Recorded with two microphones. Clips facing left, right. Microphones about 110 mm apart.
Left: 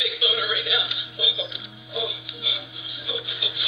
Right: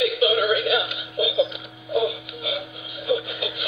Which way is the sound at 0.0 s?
45° right (ahead or behind).